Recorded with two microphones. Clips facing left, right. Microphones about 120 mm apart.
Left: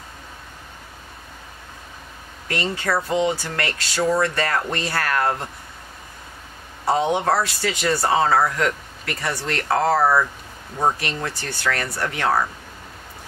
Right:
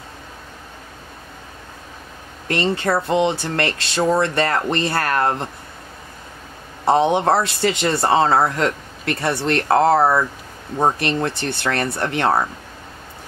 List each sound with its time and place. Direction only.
2.4 s speech: 25° right (ahead or behind)
6.8 s speech: 25° right (ahead or behind)